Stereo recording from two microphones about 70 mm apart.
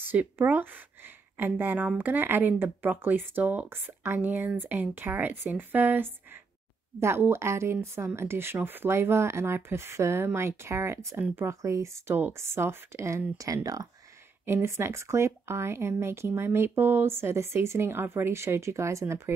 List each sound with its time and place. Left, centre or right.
0.1 s speech: right
14.4 s speech: right